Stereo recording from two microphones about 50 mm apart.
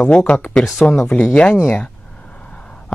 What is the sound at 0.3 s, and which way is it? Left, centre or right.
Speech, left.